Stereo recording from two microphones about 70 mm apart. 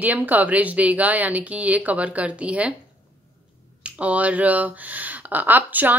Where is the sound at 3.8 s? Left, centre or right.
Centre.